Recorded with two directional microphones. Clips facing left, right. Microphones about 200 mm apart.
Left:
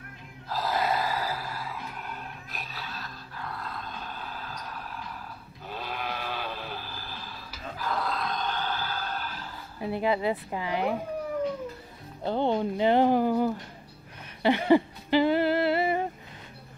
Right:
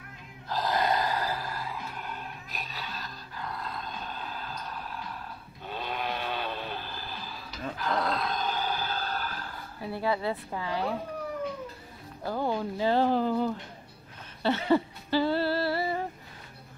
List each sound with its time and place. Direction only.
0.5 s gasp: 5° left (ahead or behind)
5.7 s sheep: centre (ahead or behind); by 8.9 s 15° right (ahead or behind)
8.9 s a sound: 40° right (ahead or behind)
9.8 s speech: 20° left (ahead or behind)
12.2 s speech: 25° left (ahead or behind)
14.4 s a sound: 15° left (ahead or behind)